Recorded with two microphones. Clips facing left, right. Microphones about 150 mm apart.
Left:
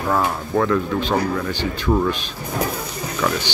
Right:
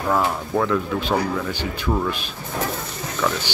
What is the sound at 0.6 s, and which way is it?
Speech, 5° right (ahead or behind).